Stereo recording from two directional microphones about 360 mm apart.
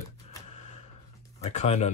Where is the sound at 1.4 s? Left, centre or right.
Centre.